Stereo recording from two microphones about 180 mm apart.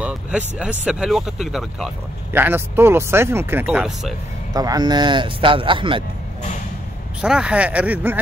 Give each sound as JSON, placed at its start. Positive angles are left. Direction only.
{"t": 0.6, "sound": "speech", "side_deg": -5}
{"t": 4.6, "sound": "speech", "side_deg": -20}
{"t": 7.2, "sound": "speech", "side_deg": -5}